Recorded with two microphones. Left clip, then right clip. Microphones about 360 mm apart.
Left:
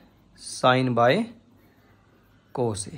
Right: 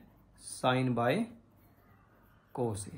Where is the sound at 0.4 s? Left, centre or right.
Left.